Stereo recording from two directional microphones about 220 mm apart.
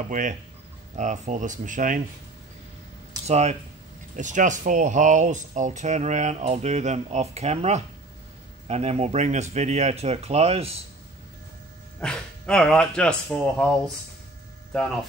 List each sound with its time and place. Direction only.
0.1 s speech: 35° right (ahead or behind)
3.3 s speech: 30° right (ahead or behind)
12.0 s speech: 5° left (ahead or behind)